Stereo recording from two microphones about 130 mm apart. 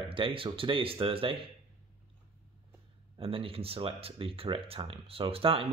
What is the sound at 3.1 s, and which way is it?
Speech, 45° right (ahead or behind).